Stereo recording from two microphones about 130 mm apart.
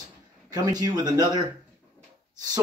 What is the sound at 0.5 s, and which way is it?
Speech, 30° right (ahead or behind).